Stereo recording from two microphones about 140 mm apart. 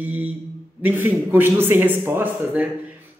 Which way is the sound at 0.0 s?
10° right (ahead or behind).